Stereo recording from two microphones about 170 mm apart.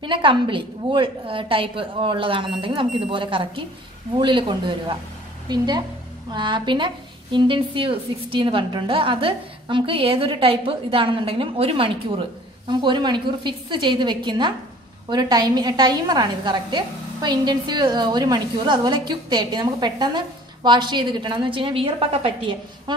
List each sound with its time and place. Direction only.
0.0 s a woman's voice: 30° right (ahead or behind)
6.3 s a woman's voice: 25° right (ahead or behind)